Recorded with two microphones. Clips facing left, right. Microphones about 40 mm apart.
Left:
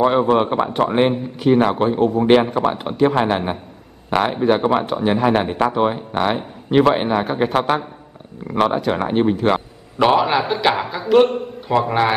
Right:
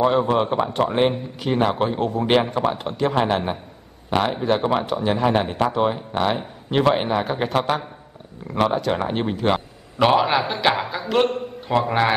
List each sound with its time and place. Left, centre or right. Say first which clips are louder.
0.0 s speech: left 3 dB; left
1.1 s a man's voice: left 7 dB; centre
2.6 s a man's voice: left 5 dB; centre